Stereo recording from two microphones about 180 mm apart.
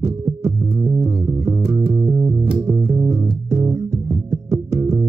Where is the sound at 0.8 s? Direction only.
10° right (ahead or behind).